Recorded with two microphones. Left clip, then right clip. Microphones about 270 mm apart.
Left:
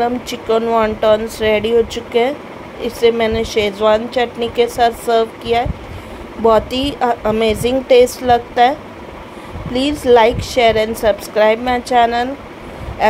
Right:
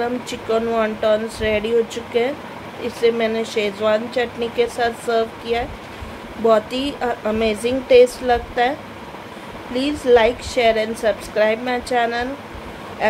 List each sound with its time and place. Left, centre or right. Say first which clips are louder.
0.0 s speech: left 5 dB; centre
2.8 s speech: left 4 dB; centre
9.8 s speech: left 4 dB; centre